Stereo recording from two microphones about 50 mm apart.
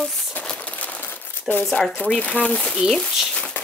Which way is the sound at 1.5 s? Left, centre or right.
Centre.